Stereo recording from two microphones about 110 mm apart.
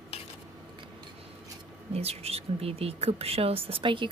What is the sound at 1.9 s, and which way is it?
Speech, 70° right (ahead or behind).